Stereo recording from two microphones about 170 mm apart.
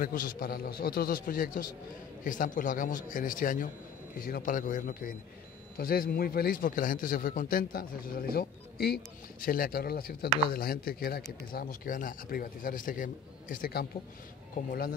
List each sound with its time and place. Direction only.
0.0 s a man's voice: 55° left (ahead or behind)